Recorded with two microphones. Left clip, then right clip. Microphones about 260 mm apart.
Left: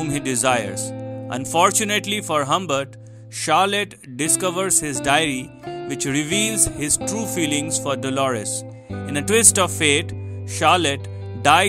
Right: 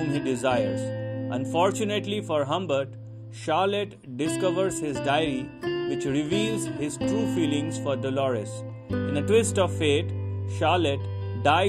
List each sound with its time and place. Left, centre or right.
0.1 s speech: left